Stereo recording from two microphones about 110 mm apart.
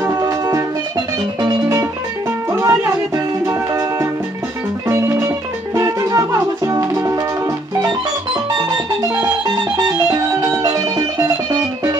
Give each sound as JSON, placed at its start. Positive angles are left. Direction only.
{"t": 0.0, "sound": "music", "side_deg": -30}
{"t": 2.5, "sound": "music", "side_deg": -30}
{"t": 5.8, "sound": "music", "side_deg": -30}
{"t": 9.8, "sound": "music", "side_deg": -35}